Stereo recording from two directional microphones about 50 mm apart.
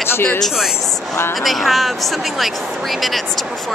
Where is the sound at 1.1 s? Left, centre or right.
Left.